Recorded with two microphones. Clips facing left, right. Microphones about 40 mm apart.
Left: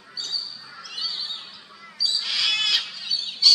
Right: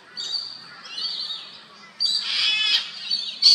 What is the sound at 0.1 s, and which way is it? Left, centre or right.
Bird, right.